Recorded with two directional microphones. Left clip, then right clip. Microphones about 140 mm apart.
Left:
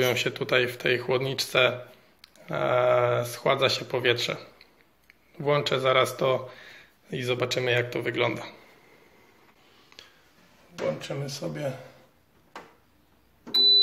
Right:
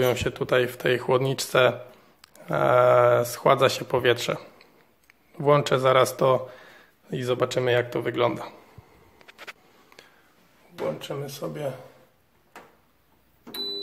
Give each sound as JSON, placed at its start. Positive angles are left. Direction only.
{"t": 0.0, "sound": "a man's voice", "side_deg": -35}
{"t": 11.0, "sound": "speech", "side_deg": -15}